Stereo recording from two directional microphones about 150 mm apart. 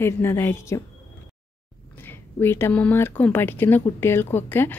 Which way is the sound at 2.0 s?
15° left (ahead or behind).